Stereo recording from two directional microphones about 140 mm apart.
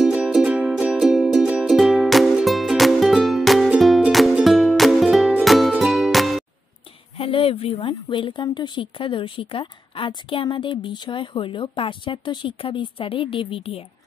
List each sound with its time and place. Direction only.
0.0 s music: 5° right (ahead or behind)
7.2 s speech: 40° left (ahead or behind)